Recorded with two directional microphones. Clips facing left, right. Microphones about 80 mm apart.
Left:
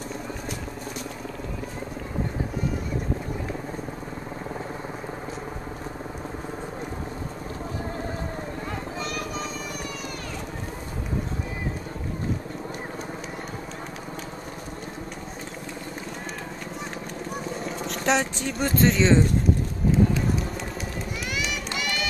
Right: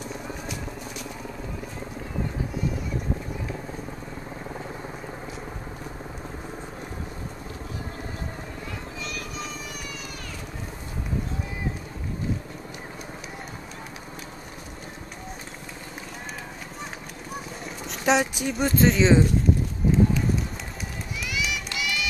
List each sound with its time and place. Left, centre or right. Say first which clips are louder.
17.6 s speech: right 2 dB; centre
21.2 s run: right 2 dB; left